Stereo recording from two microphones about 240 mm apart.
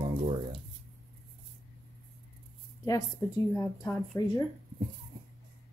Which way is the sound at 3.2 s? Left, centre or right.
Centre.